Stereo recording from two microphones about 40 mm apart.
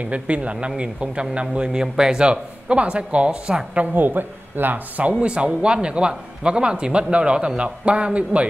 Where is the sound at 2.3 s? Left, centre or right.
Right.